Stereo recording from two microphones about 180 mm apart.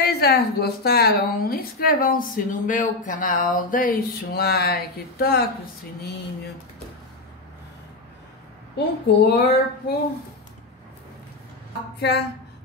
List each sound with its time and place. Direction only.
0.0 s a woman's voice: 60° left (ahead or behind)
8.7 s a woman's voice: 60° left (ahead or behind)
12.0 s speech: 65° left (ahead or behind)